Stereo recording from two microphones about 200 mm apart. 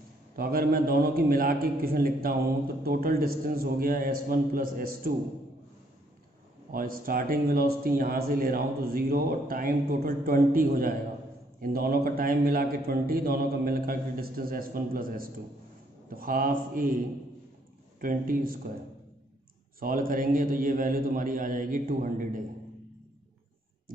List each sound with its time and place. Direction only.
0.4 s speech: 45° right (ahead or behind)
6.7 s speech: 45° right (ahead or behind)
18.0 s speech: 45° right (ahead or behind)
19.8 s speech: 45° right (ahead or behind)